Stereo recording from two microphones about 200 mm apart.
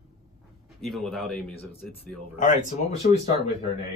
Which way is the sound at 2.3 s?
40° left (ahead or behind).